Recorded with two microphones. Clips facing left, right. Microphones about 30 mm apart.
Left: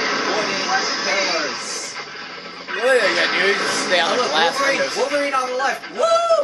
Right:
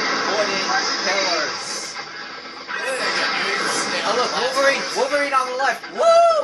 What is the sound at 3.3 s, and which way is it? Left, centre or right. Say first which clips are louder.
Speech: left 4 dB; left.